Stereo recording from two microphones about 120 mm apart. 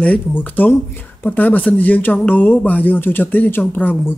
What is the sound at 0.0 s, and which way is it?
Speech, 10° left (ahead or behind).